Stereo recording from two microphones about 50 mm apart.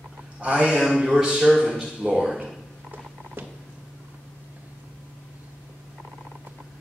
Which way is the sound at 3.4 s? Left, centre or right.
Right.